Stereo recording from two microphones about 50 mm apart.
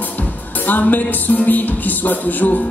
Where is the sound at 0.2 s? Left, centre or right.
Left.